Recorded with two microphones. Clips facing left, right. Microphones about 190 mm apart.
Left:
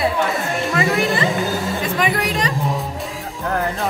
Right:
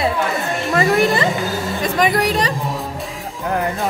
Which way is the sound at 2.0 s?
35° right (ahead or behind).